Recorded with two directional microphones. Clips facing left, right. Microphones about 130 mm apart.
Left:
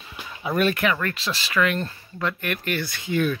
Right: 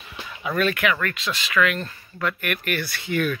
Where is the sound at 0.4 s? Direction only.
35° left (ahead or behind).